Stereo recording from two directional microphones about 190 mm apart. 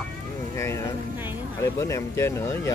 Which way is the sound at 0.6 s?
15° left (ahead or behind).